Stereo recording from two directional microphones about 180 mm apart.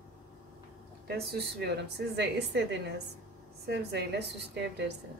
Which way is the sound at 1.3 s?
65° right (ahead or behind).